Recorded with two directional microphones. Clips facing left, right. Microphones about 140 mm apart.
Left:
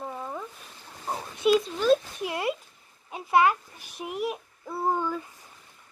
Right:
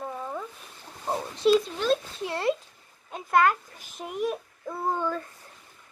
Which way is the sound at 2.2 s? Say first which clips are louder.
Right 2 dB; 10° left (ahead or behind).